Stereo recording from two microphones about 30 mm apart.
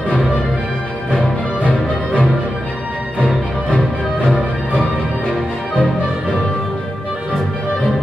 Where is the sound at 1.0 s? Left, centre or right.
Left.